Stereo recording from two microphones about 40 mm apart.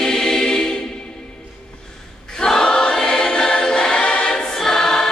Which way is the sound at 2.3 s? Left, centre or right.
Centre.